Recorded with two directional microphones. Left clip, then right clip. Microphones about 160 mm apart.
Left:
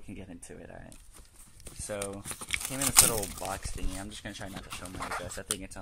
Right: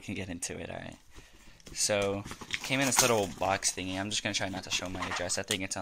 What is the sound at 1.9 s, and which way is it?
Speech, 5° right (ahead or behind).